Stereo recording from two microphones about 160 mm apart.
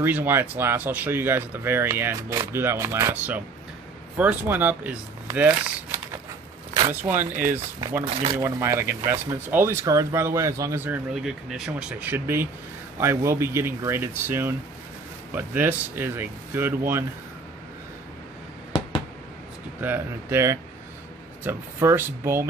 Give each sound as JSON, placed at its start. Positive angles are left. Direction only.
{"t": 0.0, "sound": "speech", "side_deg": -10}
{"t": 11.2, "sound": "speech", "side_deg": -5}
{"t": 19.8, "sound": "speech", "side_deg": -15}